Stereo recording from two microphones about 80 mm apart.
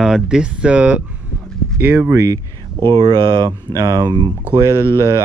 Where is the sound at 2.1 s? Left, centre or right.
Right.